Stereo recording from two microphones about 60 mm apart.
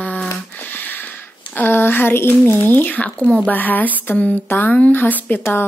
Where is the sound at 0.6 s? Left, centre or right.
Left.